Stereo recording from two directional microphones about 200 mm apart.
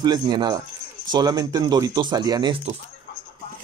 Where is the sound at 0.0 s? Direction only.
20° right (ahead or behind).